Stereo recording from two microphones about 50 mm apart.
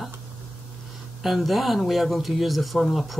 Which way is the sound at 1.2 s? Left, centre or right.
Centre.